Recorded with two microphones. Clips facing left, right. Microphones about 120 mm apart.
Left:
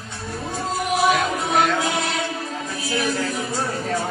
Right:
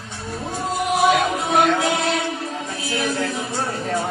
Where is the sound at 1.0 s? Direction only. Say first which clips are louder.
Right 2 dB; 25° right (ahead or behind).